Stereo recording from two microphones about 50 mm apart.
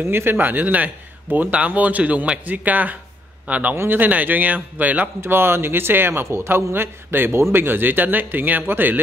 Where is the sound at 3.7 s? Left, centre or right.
Right.